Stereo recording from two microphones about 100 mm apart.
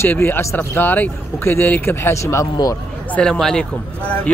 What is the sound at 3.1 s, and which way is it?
Speech, 10° left (ahead or behind).